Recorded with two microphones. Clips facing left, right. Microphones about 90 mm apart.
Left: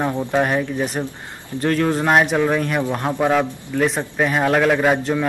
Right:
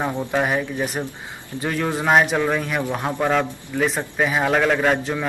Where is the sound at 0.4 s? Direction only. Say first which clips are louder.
Left 2 dB; centre (ahead or behind).